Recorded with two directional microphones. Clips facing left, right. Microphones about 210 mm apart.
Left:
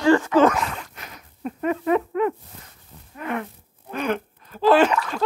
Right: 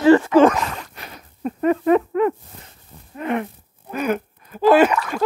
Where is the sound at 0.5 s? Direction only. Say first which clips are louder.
Right 2 dB; 40° right (ahead or behind).